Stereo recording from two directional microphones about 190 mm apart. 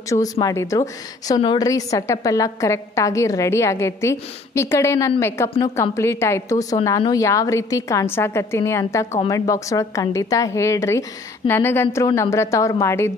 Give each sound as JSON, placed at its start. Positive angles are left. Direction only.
{"t": 0.1, "sound": "a woman's voice", "side_deg": 20}